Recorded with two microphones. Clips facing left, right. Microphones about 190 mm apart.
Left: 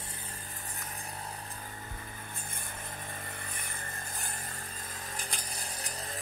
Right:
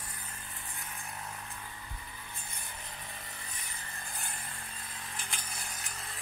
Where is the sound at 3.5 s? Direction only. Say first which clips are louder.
Left 4 dB; 50° left (ahead or behind).